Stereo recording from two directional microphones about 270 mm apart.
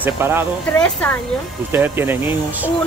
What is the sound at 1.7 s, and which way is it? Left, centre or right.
Speech, centre.